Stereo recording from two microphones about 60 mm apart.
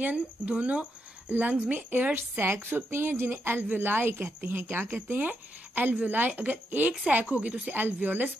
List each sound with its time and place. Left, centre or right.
0.1 s speech: right